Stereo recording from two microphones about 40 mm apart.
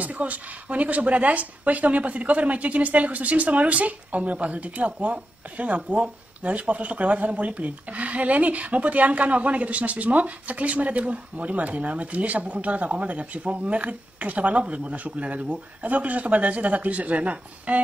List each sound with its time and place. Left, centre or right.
0.0 s speech: right